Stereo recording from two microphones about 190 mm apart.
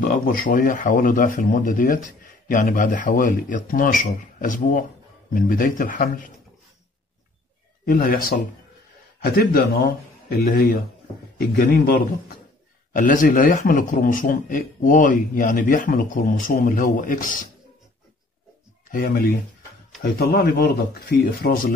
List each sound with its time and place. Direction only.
0.0 s a man's voice: 50° left (ahead or behind)
7.8 s a man's voice: 50° left (ahead or behind)
18.9 s speech: 50° left (ahead or behind)